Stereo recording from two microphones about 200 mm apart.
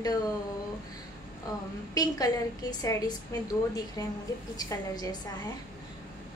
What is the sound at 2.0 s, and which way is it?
A woman's voice, 20° left (ahead or behind).